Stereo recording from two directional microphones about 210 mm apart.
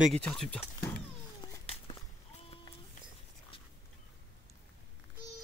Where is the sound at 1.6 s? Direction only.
30° left (ahead or behind).